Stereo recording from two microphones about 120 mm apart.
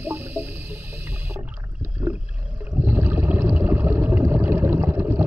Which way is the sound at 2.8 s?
15° right (ahead or behind).